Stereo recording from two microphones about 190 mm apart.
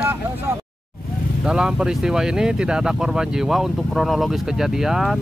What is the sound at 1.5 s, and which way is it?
Speech, 5° right (ahead or behind).